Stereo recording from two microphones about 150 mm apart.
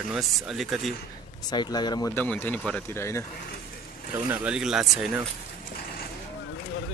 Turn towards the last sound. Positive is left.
turn(degrees=-5)  # may be behind; listen again after turning